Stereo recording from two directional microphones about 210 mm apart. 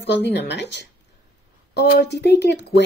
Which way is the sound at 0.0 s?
55° left (ahead or behind).